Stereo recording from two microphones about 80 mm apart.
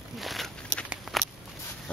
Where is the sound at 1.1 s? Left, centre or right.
Centre.